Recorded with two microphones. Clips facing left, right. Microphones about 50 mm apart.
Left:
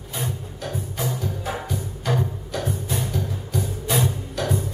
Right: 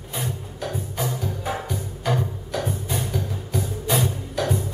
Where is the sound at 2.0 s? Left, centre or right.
Centre.